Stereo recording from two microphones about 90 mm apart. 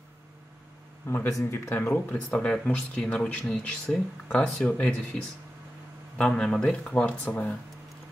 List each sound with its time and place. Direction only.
1.0 s speech: 30° left (ahead or behind)
6.1 s speech: 10° left (ahead or behind)